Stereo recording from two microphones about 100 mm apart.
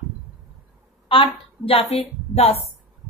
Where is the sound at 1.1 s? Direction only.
65° left (ahead or behind); by 2.5 s 90° left.